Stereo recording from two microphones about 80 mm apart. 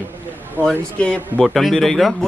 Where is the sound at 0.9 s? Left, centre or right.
Centre.